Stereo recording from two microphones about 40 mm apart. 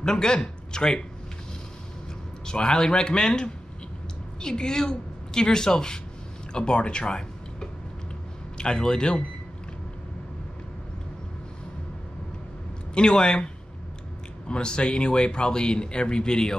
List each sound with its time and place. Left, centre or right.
0.0 s speech: centre
2.4 s speech: centre
12.9 s speech: centre
14.5 s speech: left